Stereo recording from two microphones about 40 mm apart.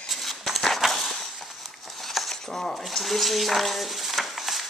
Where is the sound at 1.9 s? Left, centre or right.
Centre.